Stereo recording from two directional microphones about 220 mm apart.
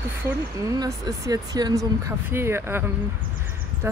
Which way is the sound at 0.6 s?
15° right (ahead or behind).